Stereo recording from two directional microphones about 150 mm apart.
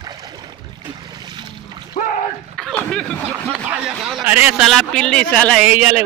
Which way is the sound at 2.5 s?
5° left (ahead or behind).